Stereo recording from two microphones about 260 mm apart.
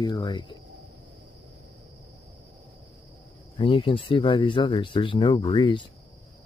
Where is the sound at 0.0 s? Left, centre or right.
Centre.